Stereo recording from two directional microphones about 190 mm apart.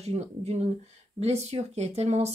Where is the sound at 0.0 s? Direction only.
35° right (ahead or behind).